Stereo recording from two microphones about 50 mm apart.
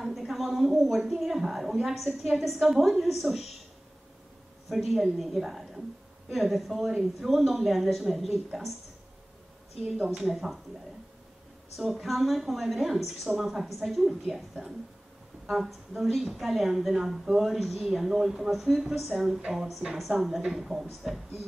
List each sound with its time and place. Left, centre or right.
0.0 s a woman's voice: centre
4.6 s a woman's voice: centre
9.9 s a woman's voice: centre
11.7 s a woman's voice: centre